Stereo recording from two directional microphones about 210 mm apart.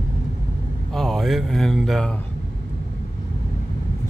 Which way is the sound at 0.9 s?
Centre (ahead or behind).